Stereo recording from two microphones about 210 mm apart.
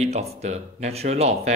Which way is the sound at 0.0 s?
30° right (ahead or behind).